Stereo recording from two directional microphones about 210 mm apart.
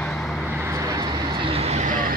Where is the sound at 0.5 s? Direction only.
15° right (ahead or behind); by 2.1 s 35° right (ahead or behind).